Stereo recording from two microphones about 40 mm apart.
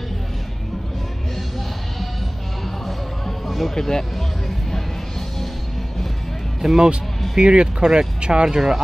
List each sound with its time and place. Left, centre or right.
3.3 s music: centre
3.7 s speech: centre
6.6 s speech: centre
7.3 s speech: centre